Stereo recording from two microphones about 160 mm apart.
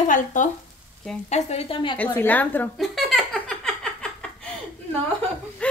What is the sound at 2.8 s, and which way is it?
Giggle, centre (ahead or behind).